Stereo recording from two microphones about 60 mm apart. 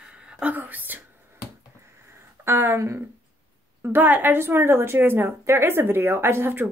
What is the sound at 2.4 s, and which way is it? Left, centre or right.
Speech, right.